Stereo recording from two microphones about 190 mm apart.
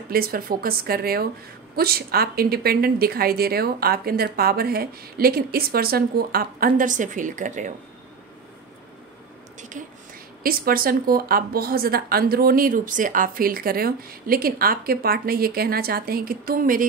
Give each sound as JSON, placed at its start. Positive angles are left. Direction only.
{"t": 0.1, "sound": "a woman's voice", "side_deg": -50}
{"t": 9.6, "sound": "a sound", "side_deg": -45}
{"t": 10.4, "sound": "a woman's voice", "side_deg": -50}